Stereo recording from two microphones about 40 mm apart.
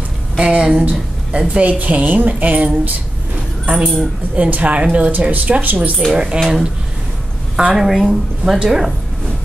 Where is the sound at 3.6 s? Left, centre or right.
Right.